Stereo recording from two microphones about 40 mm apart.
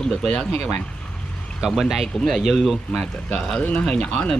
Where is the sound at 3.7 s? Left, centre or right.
Left.